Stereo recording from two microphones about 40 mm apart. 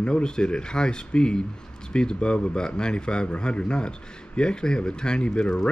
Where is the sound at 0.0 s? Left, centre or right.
Left.